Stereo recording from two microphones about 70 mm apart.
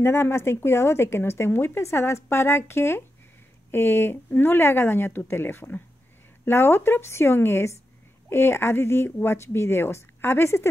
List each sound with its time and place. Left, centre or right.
0.0 s speech: left